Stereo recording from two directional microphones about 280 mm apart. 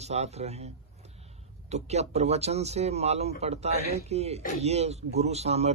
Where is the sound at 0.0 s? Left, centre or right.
Right.